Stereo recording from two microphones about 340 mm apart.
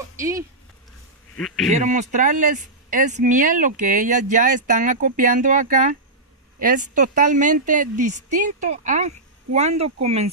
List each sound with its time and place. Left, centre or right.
0.2 s speech: centre
1.7 s speech: centre